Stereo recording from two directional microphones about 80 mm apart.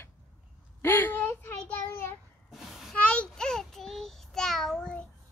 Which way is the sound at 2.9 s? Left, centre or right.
Centre.